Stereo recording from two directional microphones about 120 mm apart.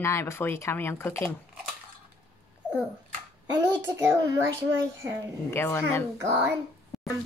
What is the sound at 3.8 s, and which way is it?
Speech, 20° right (ahead or behind).